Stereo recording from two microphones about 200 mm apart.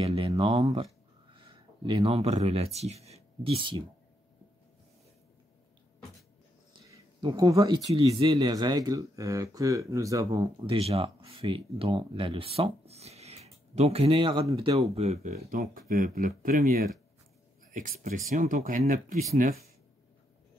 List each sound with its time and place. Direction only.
0.0 s speech: 30° right (ahead or behind)
6.9 s speech: 20° right (ahead or behind)
7.9 s speech: 30° right (ahead or behind)
10.7 s speech: 30° right (ahead or behind)